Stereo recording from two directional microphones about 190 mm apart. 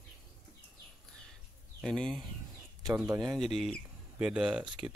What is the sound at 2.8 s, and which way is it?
Speech, 15° right (ahead or behind).